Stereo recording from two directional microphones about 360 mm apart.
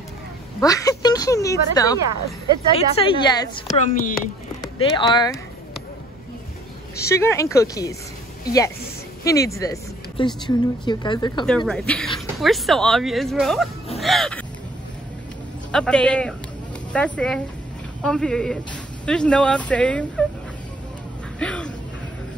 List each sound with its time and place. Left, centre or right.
0.6 s speech: centre
7.0 s a woman's voice: centre
15.7 s a woman's voice: centre
21.4 s a sound: centre